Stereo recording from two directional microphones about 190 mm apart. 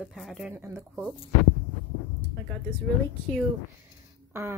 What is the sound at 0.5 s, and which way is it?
Speech, 15° right (ahead or behind).